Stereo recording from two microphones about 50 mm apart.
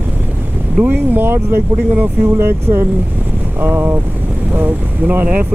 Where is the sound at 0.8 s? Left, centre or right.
Right.